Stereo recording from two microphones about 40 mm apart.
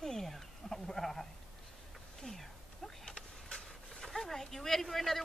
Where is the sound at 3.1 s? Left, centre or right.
Left.